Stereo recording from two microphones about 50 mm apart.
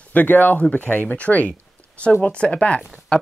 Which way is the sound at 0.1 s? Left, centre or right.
Left.